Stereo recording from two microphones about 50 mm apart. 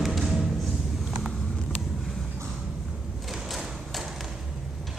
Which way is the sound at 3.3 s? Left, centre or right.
Centre.